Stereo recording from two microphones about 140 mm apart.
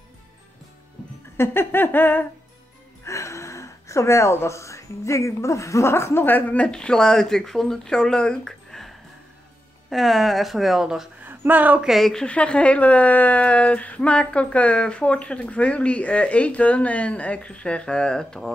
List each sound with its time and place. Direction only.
1.3 s speech: 15° left (ahead or behind); by 11.9 s 10° right (ahead or behind)
11.9 s speech: centre (ahead or behind)